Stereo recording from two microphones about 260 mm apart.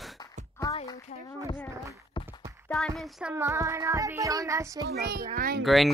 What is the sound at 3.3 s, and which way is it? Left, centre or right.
Speech, centre.